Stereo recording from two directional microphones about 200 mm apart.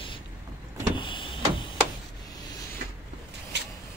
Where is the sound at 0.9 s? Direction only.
25° left (ahead or behind).